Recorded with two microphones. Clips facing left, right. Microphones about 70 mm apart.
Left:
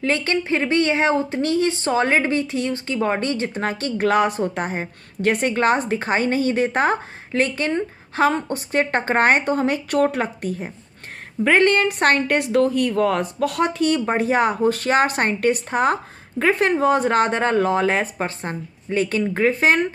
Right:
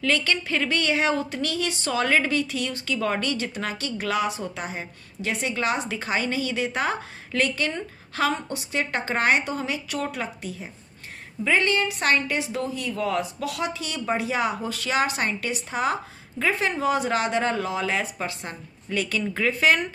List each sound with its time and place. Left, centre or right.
0.0 s a woman's voice: left